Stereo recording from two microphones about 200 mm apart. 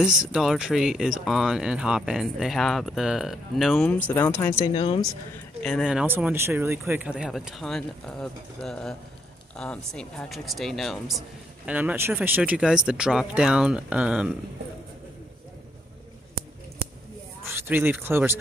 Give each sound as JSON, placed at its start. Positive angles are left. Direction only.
{"t": 0.0, "sound": "speech", "side_deg": 0}
{"t": 4.7, "sound": "speech", "side_deg": 30}
{"t": 5.6, "sound": "speech", "side_deg": 0}
{"t": 17.5, "sound": "speech", "side_deg": -10}